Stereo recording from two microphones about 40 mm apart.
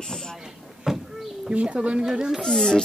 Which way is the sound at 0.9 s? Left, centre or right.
Centre.